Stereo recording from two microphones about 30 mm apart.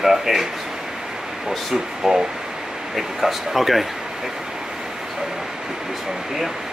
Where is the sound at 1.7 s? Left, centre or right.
Centre.